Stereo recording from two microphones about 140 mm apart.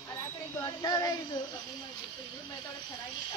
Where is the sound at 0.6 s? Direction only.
25° left (ahead or behind).